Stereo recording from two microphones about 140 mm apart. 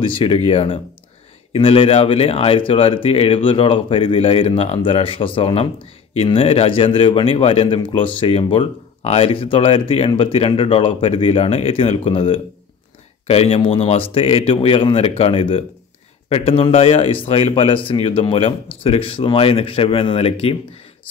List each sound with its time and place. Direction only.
0.0 s a man's voice: 40° left (ahead or behind)